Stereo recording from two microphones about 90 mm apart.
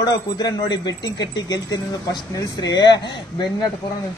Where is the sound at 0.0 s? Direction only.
50° left (ahead or behind).